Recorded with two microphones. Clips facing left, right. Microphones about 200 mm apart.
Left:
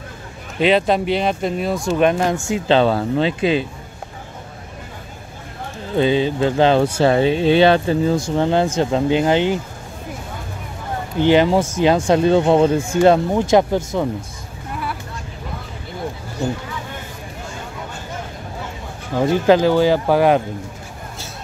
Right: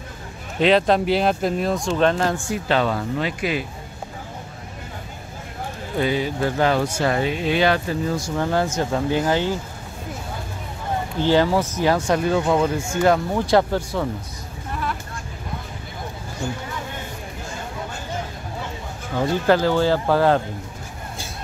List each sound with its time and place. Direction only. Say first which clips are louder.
0.6 s speech: left 1 dB; centre (ahead or behind)
2.4 s speech: left 6 dB; 25° left (ahead or behind)
5.9 s speech: left 5 dB; 25° left (ahead or behind)
11.1 s speech: left 4 dB; 20° left (ahead or behind)
19.1 s speech: left 4 dB; 15° left (ahead or behind)